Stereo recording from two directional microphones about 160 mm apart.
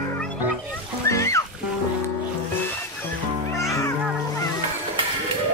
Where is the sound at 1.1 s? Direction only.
20° left (ahead or behind).